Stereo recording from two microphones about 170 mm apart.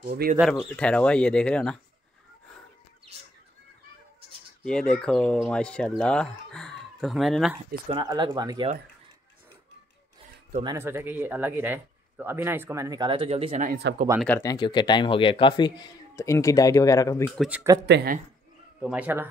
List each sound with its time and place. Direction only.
0.0 s speech: 55° right (ahead or behind)
0.5 s speech: 5° left (ahead or behind)
4.6 s speech: 5° left (ahead or behind)
7.9 s speech: 25° right (ahead or behind)
10.6 s speech: 15° right (ahead or behind); by 13.6 s 35° right (ahead or behind)
13.9 s speech: 90° right
14.4 s speech: 25° left (ahead or behind)
17.4 s speech: centre (ahead or behind)
17.8 s speech: 80° right
18.8 s speech: 5° right (ahead or behind)